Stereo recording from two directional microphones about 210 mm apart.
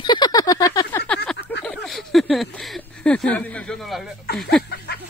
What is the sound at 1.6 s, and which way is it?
Speech, centre (ahead or behind).